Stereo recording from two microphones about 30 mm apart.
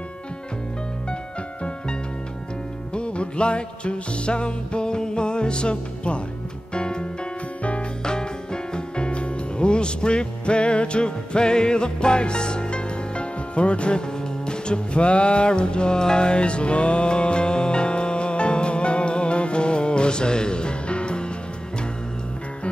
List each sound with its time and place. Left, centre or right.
2.9 s music: left